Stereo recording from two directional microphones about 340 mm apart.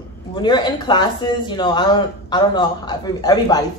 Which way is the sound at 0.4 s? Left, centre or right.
Centre.